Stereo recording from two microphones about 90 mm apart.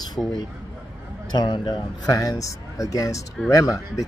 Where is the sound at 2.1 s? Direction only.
40° left (ahead or behind).